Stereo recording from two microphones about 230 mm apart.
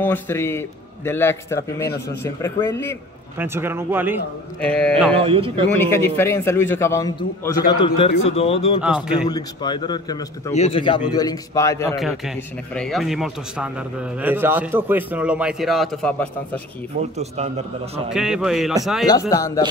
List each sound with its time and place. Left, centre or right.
0.0 s a man's voice: centre
3.3 s speech: centre
4.6 s speech: centre
5.1 s speech: right
5.9 s a man's voice: centre; by 8.8 s left
8.8 s speech: centre
9.3 s a man's voice: centre
12.0 s speech: centre
18.1 s speech: centre
19.0 s a man's voice: centre